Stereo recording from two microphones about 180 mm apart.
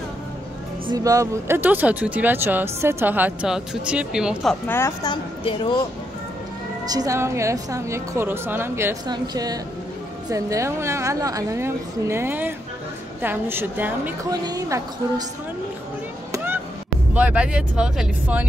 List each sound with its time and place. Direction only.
0.8 s speech: 20° right (ahead or behind); by 4.6 s centre (ahead or behind)
4.6 s speech: 15° left (ahead or behind)
6.9 s speech: 20° right (ahead or behind)
14.4 s speech: 20° right (ahead or behind)
16.3 s chop: 10° right (ahead or behind)
17.1 s speech: 5° right (ahead or behind)